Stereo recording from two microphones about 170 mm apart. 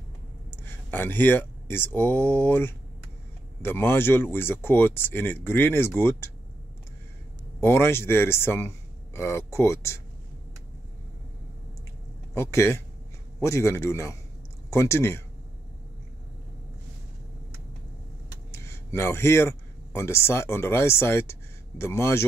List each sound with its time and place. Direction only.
0.5 s speech: 10° left (ahead or behind)
7.6 s speech: 15° left (ahead or behind)
12.4 s speech: 15° left (ahead or behind)
18.5 s a man's voice: 15° left (ahead or behind)